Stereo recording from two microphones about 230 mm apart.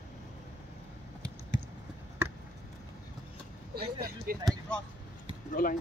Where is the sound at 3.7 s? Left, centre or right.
Right.